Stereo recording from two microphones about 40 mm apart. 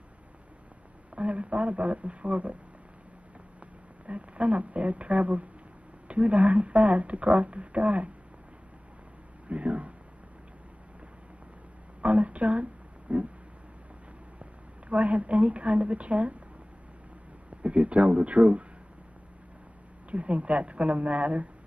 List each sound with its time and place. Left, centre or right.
1.1 s a man's voice: right
4.0 s speech: right
9.5 s speech: right
12.0 s speech: right
14.4 s a woman's voice: right
17.6 s speech: right
20.1 s speech: right